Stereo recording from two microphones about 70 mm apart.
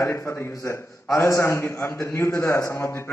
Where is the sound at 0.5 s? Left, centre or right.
Left.